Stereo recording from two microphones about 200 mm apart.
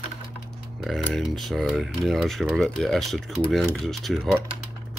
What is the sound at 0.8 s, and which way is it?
Speech, centre (ahead or behind).